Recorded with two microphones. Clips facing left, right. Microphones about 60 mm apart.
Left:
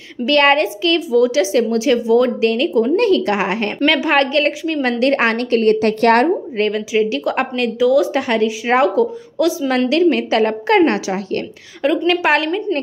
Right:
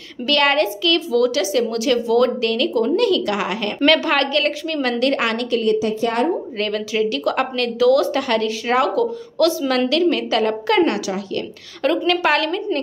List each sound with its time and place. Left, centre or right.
0.3 s speech: left
3.8 s a woman's voice: centre; by 6.2 s left
6.5 s speech: left
9.4 s a woman's voice: centre
9.7 s a woman's voice: left